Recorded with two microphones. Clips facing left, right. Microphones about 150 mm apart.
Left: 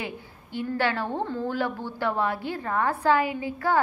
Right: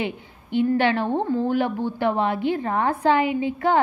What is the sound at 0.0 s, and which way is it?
A woman's voice, 20° right (ahead or behind).